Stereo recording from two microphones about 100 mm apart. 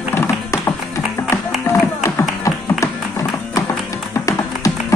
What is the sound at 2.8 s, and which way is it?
Music, 30° left (ahead or behind).